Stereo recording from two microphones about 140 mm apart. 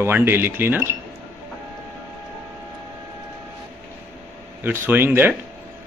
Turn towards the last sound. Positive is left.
turn(degrees=-15)  # may be behind; listen again after turning